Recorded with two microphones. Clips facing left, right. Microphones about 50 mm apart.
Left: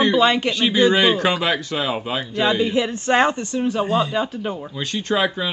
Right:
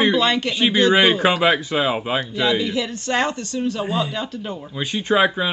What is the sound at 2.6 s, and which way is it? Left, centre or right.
A man's voice, left.